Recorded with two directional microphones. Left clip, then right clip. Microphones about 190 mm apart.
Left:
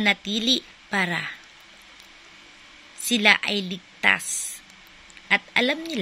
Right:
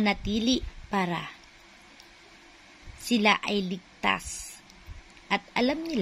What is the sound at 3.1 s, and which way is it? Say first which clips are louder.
A woman's voice: left 5 dB; 5° right (ahead or behind).